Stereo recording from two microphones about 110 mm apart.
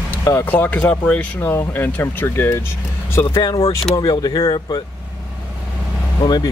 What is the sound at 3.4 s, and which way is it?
Speech, 35° left (ahead or behind).